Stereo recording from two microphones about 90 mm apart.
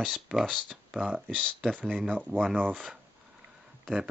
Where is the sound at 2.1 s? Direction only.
20° right (ahead or behind).